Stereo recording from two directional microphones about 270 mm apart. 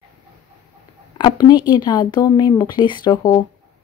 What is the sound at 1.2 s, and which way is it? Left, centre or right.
Speech, centre.